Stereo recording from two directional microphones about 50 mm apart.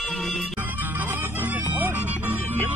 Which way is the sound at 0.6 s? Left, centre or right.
Right.